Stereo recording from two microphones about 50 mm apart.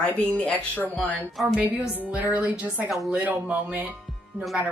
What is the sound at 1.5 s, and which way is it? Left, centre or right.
A woman's voice, right.